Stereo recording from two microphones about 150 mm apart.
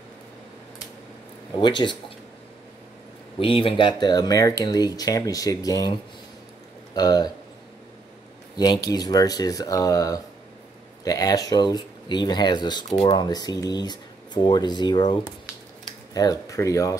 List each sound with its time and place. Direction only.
1.6 s speech: 30° left (ahead or behind)
3.3 s speech: 35° left (ahead or behind)
8.5 s speech: 25° left (ahead or behind)